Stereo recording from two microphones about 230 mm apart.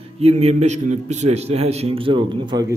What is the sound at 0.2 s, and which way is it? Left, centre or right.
A man's voice, right.